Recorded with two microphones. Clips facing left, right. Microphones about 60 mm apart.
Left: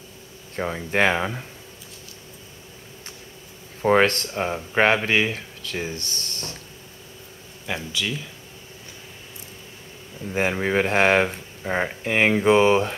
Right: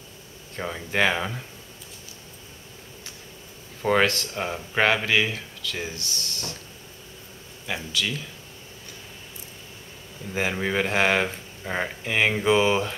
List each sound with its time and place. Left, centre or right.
0.6 s speech: centre
3.8 s speech: left
8.0 s speech: centre
10.2 s speech: centre
11.2 s speech: centre
12.0 s speech: left